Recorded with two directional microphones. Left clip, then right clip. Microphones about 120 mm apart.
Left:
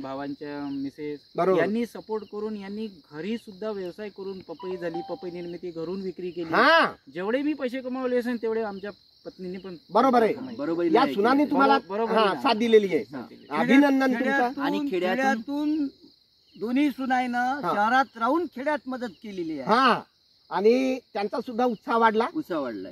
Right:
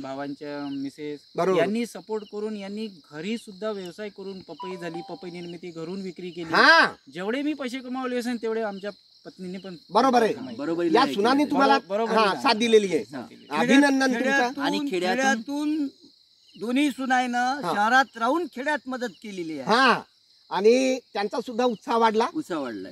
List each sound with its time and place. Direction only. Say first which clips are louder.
0.0 s speech: even; 20° right (ahead or behind)
1.3 s speech: left 1 dB; 50° left (ahead or behind)
1.6 s speech: right 1 dB; 20° right (ahead or behind)
6.4 s speech: right 2 dB; 35° left (ahead or behind)
7.2 s speech: left 2 dB; 25° right (ahead or behind)
9.9 s speech: even; 25° left (ahead or behind)
10.6 s speech: even; 5° left (ahead or behind)
10.9 s a man's voice: right 1 dB; 25° left (ahead or behind)
14.1 s speech: right 1 dB; centre (ahead or behind)
19.6 s speech: right 1 dB; 35° left (ahead or behind)
22.4 s speech: left 1 dB; 10° left (ahead or behind)